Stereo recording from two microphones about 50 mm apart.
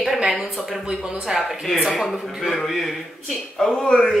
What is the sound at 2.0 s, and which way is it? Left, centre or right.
Speech, centre.